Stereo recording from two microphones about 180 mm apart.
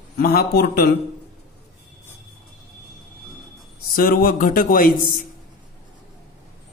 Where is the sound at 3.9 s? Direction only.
50° left (ahead or behind).